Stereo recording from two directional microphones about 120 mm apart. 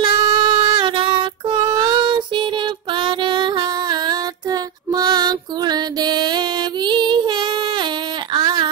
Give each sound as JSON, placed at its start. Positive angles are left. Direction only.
{"t": 0.2, "sound": "music", "side_deg": -35}